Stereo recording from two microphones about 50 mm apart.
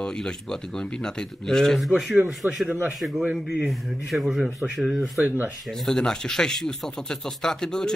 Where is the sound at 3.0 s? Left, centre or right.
Centre.